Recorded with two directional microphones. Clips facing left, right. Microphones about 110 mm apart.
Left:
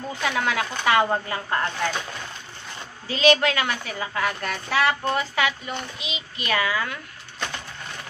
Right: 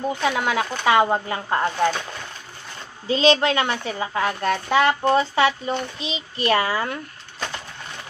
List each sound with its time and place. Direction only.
0.1 s a woman's voice: 20° right (ahead or behind)
3.1 s a woman's voice: 25° right (ahead or behind)